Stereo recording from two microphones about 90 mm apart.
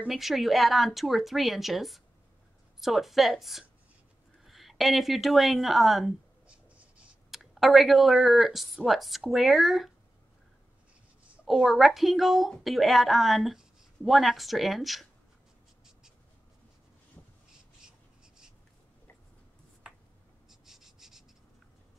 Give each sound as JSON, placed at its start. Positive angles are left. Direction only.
{"t": 0.1, "sound": "speech", "side_deg": 0}
{"t": 6.4, "sound": "clicking", "side_deg": -10}
{"t": 7.3, "sound": "speech", "side_deg": 0}
{"t": 11.4, "sound": "speech", "side_deg": -5}
{"t": 17.2, "sound": "crow", "side_deg": 20}
{"t": 17.8, "sound": "writing", "side_deg": -5}
{"t": 20.4, "sound": "a sound", "side_deg": -5}